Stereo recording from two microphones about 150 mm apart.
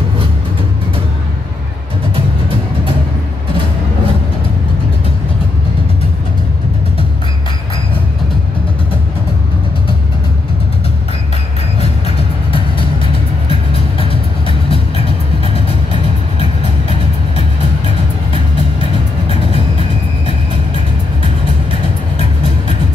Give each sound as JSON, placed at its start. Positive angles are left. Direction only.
{"t": 12.5, "sound": "music", "side_deg": 35}
{"t": 18.3, "sound": "music", "side_deg": 40}